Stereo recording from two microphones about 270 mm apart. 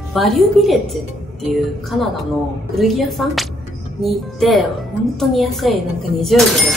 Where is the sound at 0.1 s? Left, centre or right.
Centre.